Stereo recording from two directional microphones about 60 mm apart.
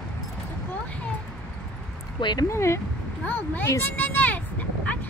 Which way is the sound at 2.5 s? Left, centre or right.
Left.